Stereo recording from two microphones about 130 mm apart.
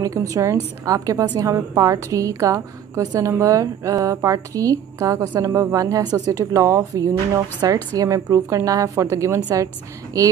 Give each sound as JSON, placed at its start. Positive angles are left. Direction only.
{"t": 0.0, "sound": "a woman's voice", "side_deg": -25}